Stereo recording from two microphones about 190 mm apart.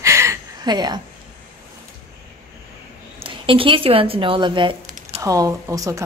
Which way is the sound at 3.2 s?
30° right (ahead or behind).